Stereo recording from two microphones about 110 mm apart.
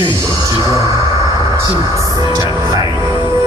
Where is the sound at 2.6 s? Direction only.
30° right (ahead or behind).